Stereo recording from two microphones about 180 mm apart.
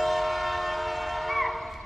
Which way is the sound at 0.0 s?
Centre (ahead or behind).